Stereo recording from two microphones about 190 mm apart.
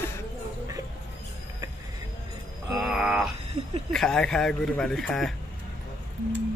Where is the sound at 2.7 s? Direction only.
5° right (ahead or behind).